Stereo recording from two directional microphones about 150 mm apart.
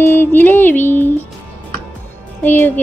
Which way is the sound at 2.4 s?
15° left (ahead or behind).